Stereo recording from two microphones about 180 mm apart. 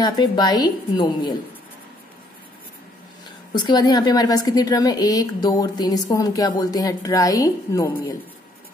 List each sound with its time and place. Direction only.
0.0 s a woman's voice: 20° left (ahead or behind)
3.5 s a woman's voice: 25° left (ahead or behind)